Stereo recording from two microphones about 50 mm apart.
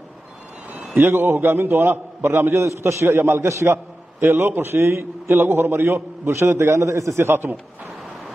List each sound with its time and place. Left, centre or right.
0.9 s a man's voice: right
2.6 s a man's voice: right
3.4 s a man's voice: right
6.2 s a man's voice: right